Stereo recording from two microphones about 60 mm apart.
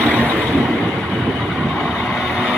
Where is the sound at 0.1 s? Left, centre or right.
Left.